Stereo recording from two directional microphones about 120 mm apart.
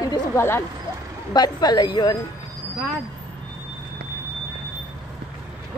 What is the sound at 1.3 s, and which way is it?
Speech, 35° left (ahead or behind).